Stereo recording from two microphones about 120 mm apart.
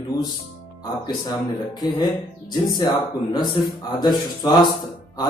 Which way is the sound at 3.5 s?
35° left (ahead or behind).